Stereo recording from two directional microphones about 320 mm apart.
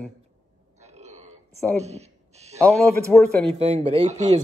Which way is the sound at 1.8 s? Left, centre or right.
Centre.